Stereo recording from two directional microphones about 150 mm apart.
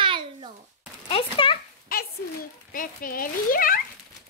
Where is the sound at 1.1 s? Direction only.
35° left (ahead or behind).